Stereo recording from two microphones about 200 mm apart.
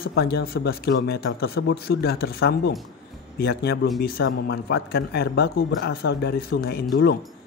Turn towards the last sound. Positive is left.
turn(degrees=55)  # may be behind; listen again after turning